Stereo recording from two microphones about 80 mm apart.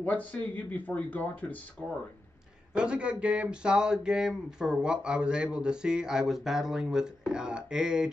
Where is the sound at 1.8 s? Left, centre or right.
Centre.